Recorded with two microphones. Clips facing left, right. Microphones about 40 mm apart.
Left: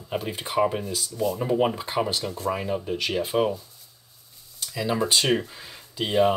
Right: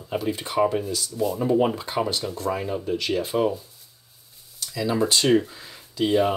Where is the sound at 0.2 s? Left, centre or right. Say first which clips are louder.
Right 2 dB; centre.